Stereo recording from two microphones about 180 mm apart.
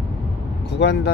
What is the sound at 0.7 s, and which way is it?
Speech, 70° left (ahead or behind).